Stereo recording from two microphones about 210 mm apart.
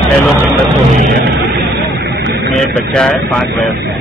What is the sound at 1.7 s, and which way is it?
Vehicle, 55° right (ahead or behind).